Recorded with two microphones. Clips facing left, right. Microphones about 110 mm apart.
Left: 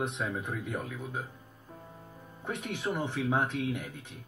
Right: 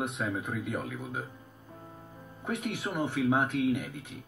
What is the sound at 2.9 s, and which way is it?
Speech, 15° right (ahead or behind).